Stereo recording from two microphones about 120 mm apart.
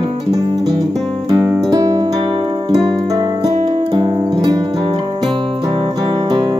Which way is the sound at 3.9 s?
30° right (ahead or behind).